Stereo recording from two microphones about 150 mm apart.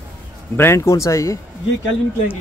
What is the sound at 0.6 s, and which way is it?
Speech, 20° left (ahead or behind).